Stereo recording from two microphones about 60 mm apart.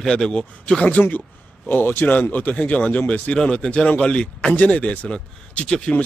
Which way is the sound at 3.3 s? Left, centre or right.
Centre.